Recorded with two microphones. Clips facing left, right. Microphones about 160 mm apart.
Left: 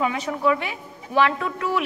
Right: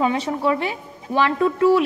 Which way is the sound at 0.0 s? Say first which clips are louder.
Right 2 dB; 30° right (ahead or behind).